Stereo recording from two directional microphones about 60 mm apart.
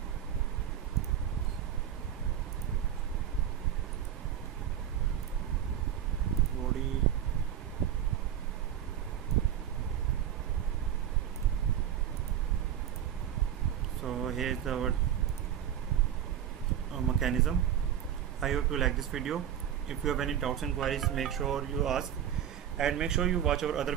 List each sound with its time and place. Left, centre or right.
14.0 s vehicle: centre
16.9 s a sound: centre
18.4 s speech: centre